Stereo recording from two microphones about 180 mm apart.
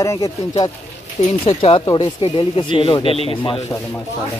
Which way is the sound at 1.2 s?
45° left (ahead or behind).